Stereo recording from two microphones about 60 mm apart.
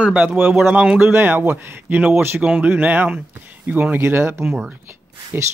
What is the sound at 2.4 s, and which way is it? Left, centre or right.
Speech, right.